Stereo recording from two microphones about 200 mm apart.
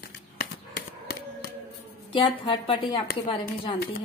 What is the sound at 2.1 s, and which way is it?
Speech, 25° left (ahead or behind).